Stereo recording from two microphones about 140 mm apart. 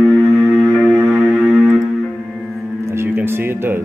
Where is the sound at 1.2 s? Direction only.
Centre (ahead or behind).